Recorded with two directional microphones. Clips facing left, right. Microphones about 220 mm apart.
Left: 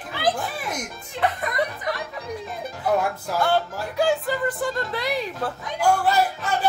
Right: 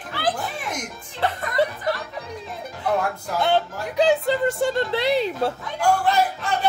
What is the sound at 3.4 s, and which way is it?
Music, 20° right (ahead or behind).